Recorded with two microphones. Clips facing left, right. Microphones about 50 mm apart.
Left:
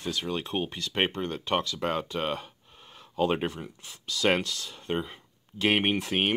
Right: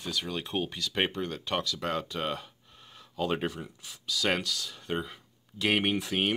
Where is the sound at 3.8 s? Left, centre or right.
Left.